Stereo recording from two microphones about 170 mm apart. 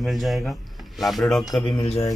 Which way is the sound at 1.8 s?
35° left (ahead or behind).